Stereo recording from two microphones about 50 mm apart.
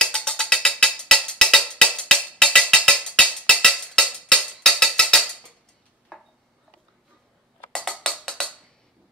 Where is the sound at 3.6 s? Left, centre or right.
Centre.